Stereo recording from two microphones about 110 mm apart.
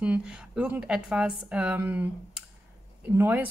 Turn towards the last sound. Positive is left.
turn(degrees=-20)  # may be behind; listen again after turning